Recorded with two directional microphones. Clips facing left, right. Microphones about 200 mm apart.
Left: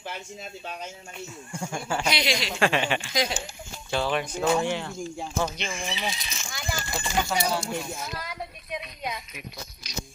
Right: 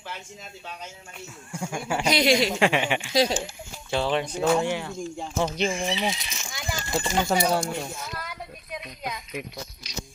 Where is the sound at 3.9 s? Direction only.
20° right (ahead or behind).